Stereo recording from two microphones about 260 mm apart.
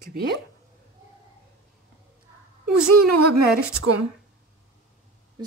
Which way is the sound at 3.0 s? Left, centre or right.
Right.